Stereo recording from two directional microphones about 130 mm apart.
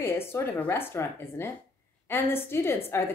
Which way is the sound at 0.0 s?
20° left (ahead or behind).